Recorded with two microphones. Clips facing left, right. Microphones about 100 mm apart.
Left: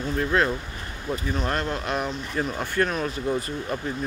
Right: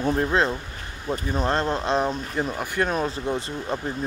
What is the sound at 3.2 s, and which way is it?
Speech, 25° right (ahead or behind).